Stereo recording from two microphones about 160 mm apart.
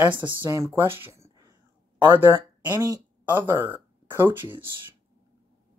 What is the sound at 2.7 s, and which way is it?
Speech, 25° right (ahead or behind).